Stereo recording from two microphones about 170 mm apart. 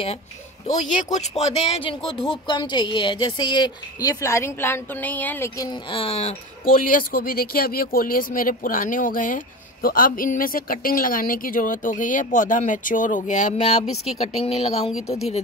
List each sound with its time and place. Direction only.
0.7 s speech: 45° left (ahead or behind); by 5.7 s 15° left (ahead or behind)
5.7 s speech: 30° left (ahead or behind)
6.6 s speech: 55° left (ahead or behind); by 14.9 s 35° left (ahead or behind)